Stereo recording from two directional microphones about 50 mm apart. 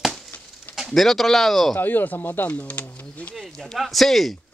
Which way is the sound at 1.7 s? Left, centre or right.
Left.